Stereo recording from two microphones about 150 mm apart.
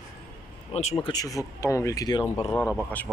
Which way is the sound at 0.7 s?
40° left (ahead or behind).